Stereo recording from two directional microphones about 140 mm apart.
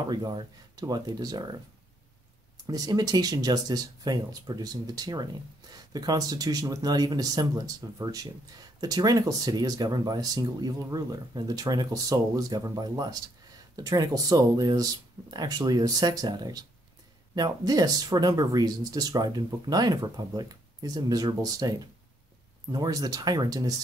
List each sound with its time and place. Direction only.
0.1 s speech: 30° right (ahead or behind)
2.6 s speech: 30° right (ahead or behind)